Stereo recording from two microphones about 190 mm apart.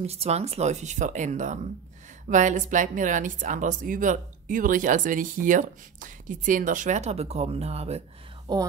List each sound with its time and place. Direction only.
0.0 s speech: 35° right (ahead or behind)
8.5 s speech: 20° right (ahead or behind)